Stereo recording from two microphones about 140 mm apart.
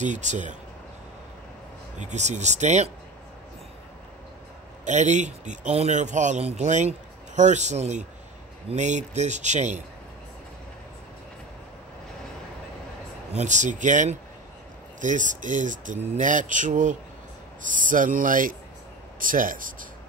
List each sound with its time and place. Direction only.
0.0 s speech: 60° right (ahead or behind)
2.0 s speech: 55° right (ahead or behind)
4.8 s speech: 55° right (ahead or behind)
13.3 s speech: 55° right (ahead or behind); by 19.9 s 75° right (ahead or behind)